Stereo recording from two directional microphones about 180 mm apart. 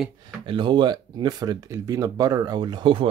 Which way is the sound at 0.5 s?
25° right (ahead or behind).